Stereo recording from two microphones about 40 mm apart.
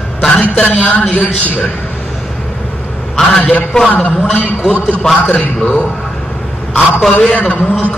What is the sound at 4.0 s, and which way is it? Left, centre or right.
A man's voice, left.